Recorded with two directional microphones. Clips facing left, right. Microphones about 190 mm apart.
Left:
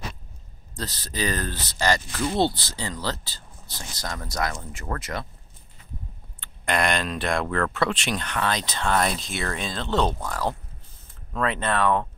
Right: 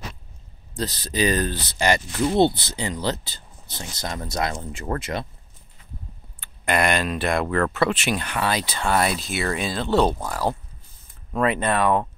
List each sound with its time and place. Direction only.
0.7 s speech: 15° right (ahead or behind)
6.4 s speech: 5° right (ahead or behind)